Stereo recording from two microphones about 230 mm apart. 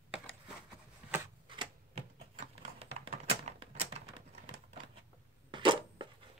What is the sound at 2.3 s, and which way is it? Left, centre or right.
Typewriter, right.